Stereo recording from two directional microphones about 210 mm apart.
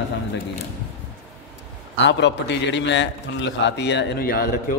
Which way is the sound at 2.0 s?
55° left (ahead or behind).